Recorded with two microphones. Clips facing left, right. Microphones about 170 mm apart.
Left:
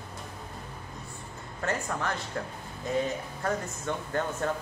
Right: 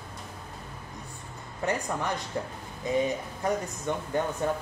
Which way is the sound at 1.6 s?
15° right (ahead or behind).